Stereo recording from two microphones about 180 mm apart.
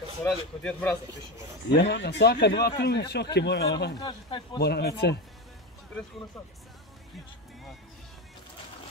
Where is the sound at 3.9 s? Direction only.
25° left (ahead or behind).